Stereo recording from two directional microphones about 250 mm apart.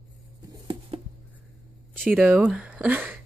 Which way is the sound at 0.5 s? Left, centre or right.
Right.